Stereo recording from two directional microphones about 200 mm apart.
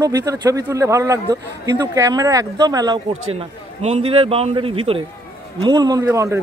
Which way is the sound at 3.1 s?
30° right (ahead or behind).